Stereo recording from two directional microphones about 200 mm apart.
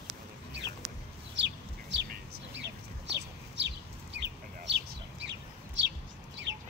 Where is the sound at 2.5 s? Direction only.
60° right (ahead or behind).